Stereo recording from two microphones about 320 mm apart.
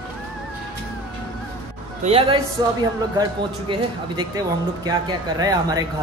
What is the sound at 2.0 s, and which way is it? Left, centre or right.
Speech, centre.